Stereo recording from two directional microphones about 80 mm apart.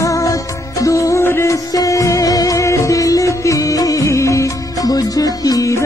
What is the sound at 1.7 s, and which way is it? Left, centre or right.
Music, left.